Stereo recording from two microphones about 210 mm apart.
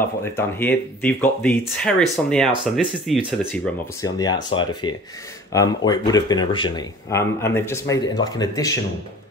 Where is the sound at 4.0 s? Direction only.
15° left (ahead or behind).